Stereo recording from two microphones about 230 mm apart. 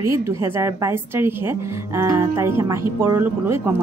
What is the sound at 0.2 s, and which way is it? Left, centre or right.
Speech, centre.